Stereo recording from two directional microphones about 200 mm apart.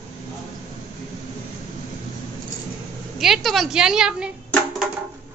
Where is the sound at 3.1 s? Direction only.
Centre (ahead or behind).